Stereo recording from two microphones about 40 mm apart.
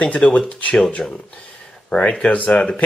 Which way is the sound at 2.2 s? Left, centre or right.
Left.